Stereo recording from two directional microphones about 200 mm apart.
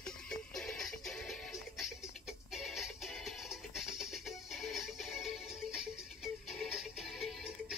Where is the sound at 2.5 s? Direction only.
Centre (ahead or behind).